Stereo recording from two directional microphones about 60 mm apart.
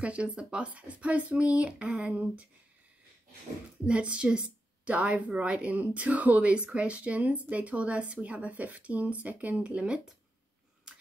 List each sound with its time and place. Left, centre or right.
0.0 s speech: centre
3.8 s a woman's voice: centre